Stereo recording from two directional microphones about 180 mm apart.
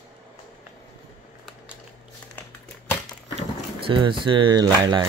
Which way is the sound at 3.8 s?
30° right (ahead or behind).